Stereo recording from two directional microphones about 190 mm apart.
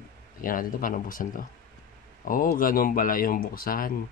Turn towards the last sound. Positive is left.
turn(degrees=50)  # may be behind; listen again after turning